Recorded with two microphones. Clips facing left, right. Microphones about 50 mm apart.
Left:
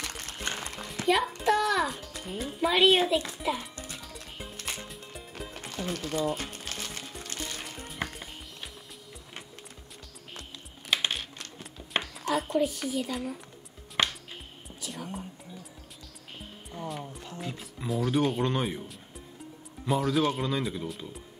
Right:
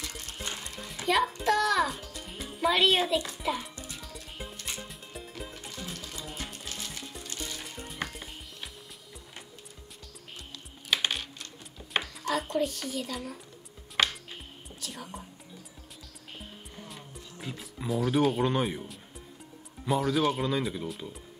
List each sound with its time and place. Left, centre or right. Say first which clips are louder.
0.0 s horse: left 3 dB; left
1.0 s a child's voice: left 1 dB; centre
4.0 s music: even; centre
5.5 s music: left 6 dB; left
8.0 s music: left 1 dB; centre
11.9 s a child's voice: left 1 dB; centre
14.8 s whispering: left 3 dB; centre
16.7 s music: left 12 dB; centre
17.4 s a child's voice: even; centre